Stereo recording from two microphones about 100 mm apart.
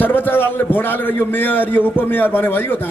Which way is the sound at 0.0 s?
20° left (ahead or behind).